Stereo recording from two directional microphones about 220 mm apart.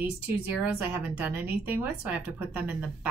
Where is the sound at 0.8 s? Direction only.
5° right (ahead or behind).